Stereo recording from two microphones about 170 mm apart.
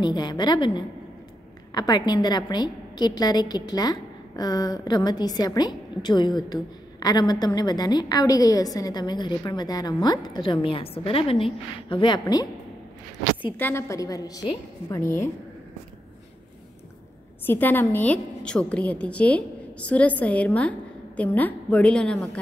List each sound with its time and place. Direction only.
0.0 s a woman's voice: 25° left (ahead or behind)
13.6 s a woman's voice: 15° left (ahead or behind)
17.5 s a woman's voice: 10° left (ahead or behind)